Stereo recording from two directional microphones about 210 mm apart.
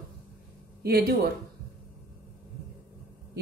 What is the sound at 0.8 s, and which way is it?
Speech, 50° right (ahead or behind).